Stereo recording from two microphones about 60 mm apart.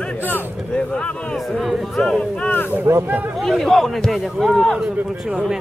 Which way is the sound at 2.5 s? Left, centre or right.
Left.